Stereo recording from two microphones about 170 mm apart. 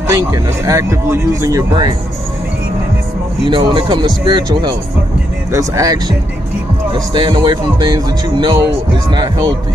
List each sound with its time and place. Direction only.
0.1 s speech: 20° right (ahead or behind)
3.4 s speech: 30° right (ahead or behind)